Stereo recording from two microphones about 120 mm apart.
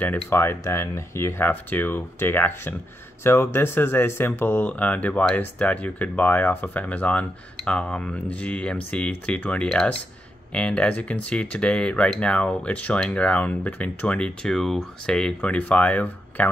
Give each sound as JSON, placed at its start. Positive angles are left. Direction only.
{"t": 0.0, "sound": "speech", "side_deg": 20}